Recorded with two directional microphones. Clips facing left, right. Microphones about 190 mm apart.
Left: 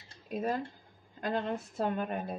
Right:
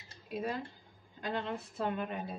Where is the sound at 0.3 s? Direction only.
45° left (ahead or behind).